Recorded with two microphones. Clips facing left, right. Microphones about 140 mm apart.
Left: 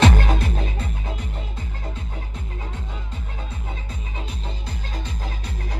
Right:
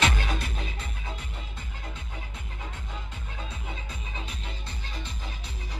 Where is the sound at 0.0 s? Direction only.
50° left (ahead or behind).